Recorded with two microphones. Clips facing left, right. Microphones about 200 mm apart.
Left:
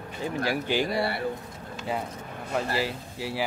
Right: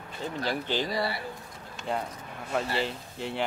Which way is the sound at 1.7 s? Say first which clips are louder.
Left 1 dB; 5° left (ahead or behind).